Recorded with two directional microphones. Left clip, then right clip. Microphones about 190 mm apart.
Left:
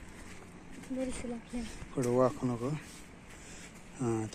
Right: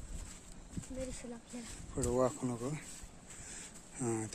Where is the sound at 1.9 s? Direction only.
10° right (ahead or behind).